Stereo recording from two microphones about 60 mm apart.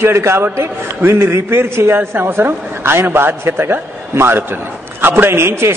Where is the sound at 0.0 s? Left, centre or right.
Right.